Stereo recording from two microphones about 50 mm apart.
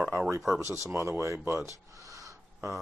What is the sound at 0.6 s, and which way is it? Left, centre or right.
Speech, right.